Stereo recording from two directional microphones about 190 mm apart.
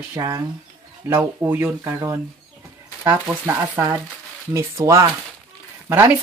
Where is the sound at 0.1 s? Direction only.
20° right (ahead or behind).